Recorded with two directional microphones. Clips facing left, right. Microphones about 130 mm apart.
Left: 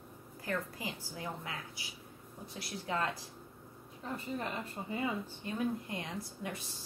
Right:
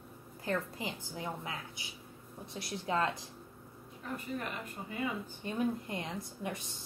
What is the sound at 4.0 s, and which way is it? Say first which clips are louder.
Speech: even; 25° left (ahead or behind).